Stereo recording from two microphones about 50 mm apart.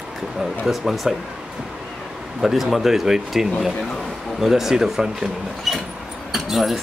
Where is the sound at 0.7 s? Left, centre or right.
Centre.